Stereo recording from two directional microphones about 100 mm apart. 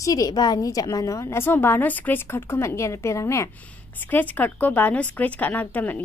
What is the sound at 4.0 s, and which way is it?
A woman's voice, 15° left (ahead or behind).